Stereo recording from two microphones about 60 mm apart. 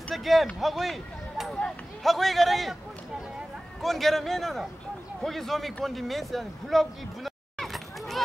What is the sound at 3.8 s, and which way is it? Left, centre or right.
Speech, centre.